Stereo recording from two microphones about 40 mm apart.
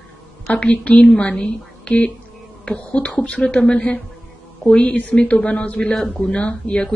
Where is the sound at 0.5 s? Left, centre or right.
Left.